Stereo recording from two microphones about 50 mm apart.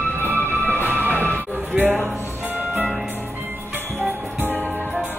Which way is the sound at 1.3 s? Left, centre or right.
Right.